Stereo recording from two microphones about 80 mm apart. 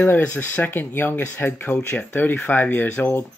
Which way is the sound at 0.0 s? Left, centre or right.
Left.